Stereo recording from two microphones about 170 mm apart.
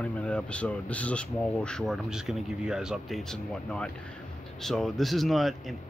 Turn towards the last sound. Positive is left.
turn(degrees=0)  # may be behind; listen again after turning